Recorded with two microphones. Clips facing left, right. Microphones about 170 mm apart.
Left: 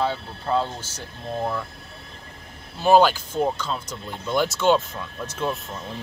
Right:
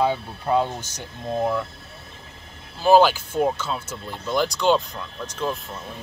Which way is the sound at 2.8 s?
5° right (ahead or behind).